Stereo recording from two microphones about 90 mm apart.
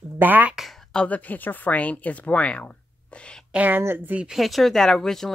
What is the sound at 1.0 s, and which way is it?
Speech, 15° left (ahead or behind).